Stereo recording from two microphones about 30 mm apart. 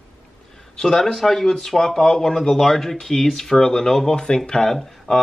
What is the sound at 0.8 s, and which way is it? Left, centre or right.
Speech, centre.